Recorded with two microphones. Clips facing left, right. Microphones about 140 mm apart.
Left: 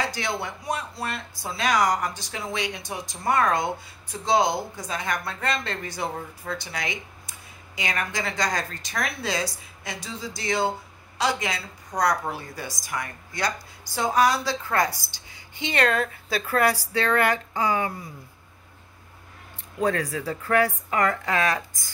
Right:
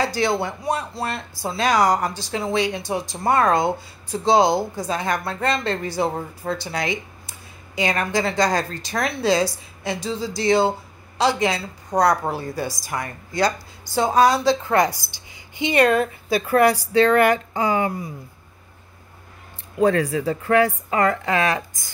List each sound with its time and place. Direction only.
0.0 s a woman's voice: 35° right (ahead or behind)
17.0 s a woman's voice: 30° right (ahead or behind)
19.8 s a woman's voice: 30° right (ahead or behind)